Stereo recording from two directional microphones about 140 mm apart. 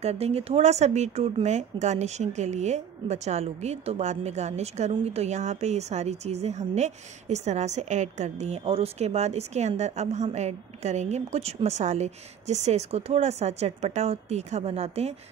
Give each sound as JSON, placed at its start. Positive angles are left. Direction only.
{"t": 0.0, "sound": "speech", "side_deg": -45}